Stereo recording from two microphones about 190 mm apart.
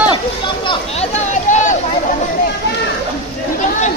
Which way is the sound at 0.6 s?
35° left (ahead or behind).